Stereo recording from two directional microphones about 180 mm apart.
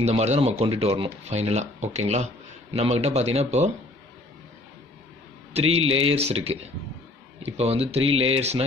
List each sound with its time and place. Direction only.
0.0 s speech: 35° right (ahead or behind)
5.5 s speech: 35° right (ahead or behind)